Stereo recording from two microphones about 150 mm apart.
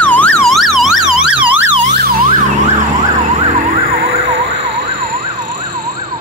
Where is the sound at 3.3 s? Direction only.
50° right (ahead or behind).